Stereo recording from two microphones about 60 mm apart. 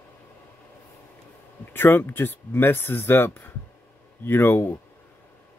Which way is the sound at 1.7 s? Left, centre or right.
Left.